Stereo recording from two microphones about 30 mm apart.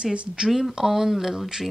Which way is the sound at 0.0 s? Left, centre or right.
Right.